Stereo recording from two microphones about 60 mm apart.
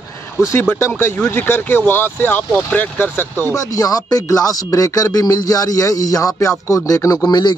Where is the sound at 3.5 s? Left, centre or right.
Left.